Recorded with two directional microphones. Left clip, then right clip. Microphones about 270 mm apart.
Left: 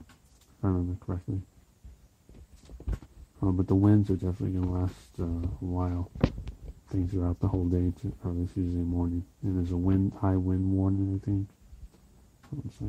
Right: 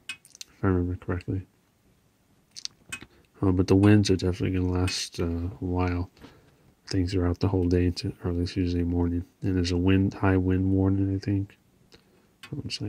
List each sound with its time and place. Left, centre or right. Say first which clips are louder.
0.6 s speech: right 5 dB; right
3.3 s speech: right 5 dB; right